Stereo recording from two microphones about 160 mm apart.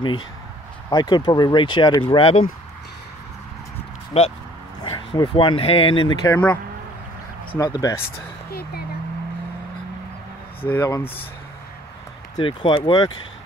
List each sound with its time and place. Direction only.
0.8 s speech: 25° left (ahead or behind)
4.1 s speech: 40° left (ahead or behind)
4.8 s speech: 30° left (ahead or behind)
6.2 s speech: 15° left (ahead or behind)
8.5 s speech: 75° left (ahead or behind)
10.6 s speech: 15° left (ahead or behind)
12.4 s speech: 30° left (ahead or behind)